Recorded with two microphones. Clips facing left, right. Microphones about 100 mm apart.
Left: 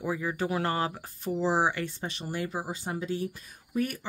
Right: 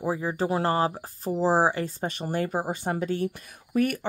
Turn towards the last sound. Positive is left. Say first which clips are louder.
# right 6 dB
turn(degrees=-65)  # may be behind; listen again after turning